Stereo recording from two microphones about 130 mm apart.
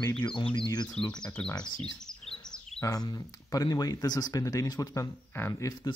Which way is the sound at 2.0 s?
5° left (ahead or behind).